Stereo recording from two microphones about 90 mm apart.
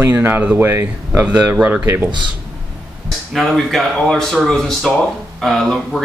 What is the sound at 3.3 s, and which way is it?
Speech, centre (ahead or behind).